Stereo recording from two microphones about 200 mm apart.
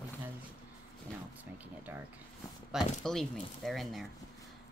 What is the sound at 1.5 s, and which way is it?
Speech, 10° right (ahead or behind).